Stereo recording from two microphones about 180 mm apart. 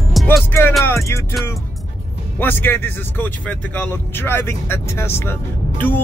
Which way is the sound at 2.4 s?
10° left (ahead or behind).